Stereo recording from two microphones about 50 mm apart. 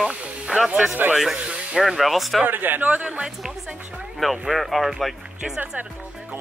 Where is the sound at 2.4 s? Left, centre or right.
Right.